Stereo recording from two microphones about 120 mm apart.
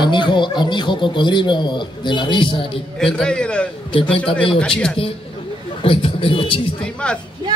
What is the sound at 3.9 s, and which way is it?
Speech, 50° left (ahead or behind).